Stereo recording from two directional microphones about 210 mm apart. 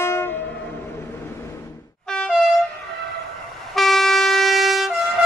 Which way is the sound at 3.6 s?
Centre (ahead or behind).